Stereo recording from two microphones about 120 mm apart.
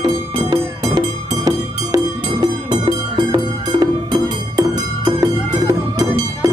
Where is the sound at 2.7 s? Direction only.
45° right (ahead or behind).